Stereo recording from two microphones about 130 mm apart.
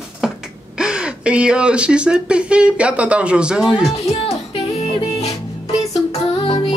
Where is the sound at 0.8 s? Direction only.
5° right (ahead or behind).